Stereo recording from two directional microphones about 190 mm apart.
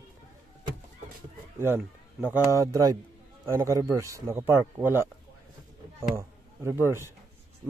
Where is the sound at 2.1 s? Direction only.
10° right (ahead or behind).